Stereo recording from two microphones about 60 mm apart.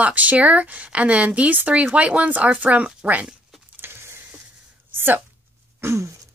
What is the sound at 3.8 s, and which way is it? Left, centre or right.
Vehicle, right.